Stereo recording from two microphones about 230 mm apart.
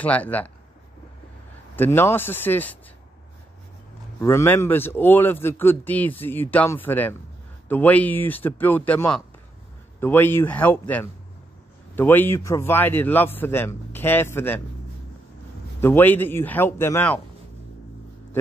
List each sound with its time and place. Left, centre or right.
0.0 s speech: centre
1.8 s speech: centre
4.2 s speech: centre
15.8 s speech: centre